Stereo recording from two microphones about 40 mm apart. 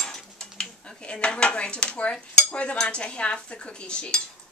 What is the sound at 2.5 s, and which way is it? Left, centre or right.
Cutlery, left.